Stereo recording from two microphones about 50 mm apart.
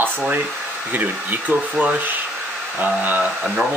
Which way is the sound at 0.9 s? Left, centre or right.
Right.